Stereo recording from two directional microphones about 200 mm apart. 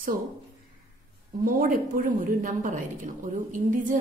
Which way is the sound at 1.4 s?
45° right (ahead or behind).